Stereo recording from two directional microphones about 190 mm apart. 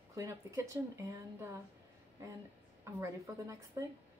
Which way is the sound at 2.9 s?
15° right (ahead or behind).